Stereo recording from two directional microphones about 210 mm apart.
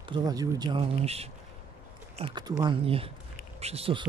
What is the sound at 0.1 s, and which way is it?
Speech, 20° right (ahead or behind).